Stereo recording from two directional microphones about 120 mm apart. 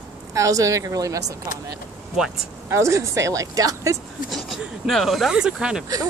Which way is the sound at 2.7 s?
25° right (ahead or behind).